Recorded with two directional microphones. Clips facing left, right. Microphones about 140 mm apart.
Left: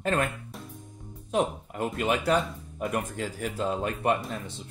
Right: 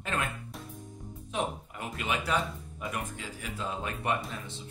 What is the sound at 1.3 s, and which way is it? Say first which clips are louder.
Speech: left 6 dB; 45° left (ahead or behind).